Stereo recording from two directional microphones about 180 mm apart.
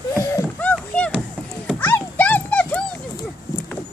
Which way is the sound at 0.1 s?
20° left (ahead or behind).